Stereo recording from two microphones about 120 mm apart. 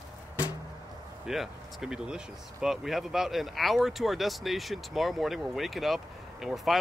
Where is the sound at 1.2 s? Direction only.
5° right (ahead or behind).